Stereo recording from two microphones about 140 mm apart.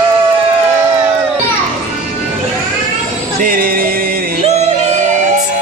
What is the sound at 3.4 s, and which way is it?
Music, 85° right.